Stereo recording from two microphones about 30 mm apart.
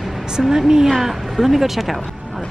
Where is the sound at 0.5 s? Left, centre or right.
Centre.